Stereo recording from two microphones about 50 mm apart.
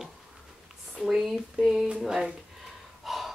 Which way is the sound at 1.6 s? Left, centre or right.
Right.